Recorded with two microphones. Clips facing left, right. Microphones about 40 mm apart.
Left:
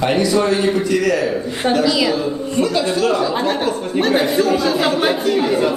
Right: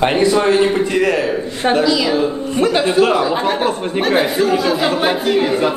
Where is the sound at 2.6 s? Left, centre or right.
Right.